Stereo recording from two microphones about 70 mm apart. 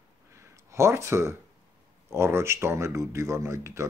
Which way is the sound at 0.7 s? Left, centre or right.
Right.